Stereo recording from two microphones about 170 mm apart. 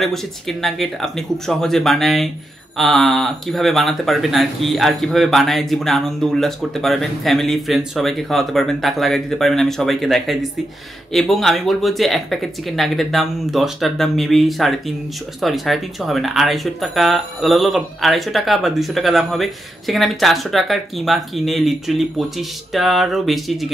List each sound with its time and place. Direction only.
0.0 s speech: centre (ahead or behind)